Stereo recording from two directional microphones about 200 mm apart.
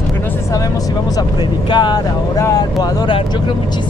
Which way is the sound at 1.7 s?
20° left (ahead or behind).